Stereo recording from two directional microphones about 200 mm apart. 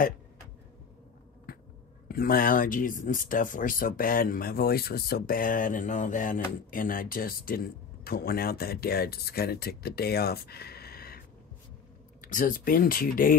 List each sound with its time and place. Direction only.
2.0 s speech: 45° left (ahead or behind)